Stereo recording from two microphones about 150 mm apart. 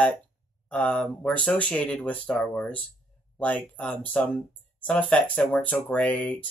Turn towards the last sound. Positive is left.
turn(degrees=10)  # may be behind; listen again after turning